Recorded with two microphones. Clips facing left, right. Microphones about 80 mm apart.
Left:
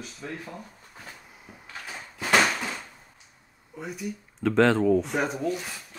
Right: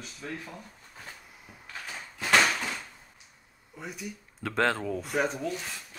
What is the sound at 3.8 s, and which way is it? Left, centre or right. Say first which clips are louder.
Speech: left 5 dB; centre.